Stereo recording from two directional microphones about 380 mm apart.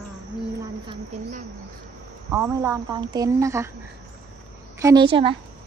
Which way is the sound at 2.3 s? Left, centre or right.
Centre.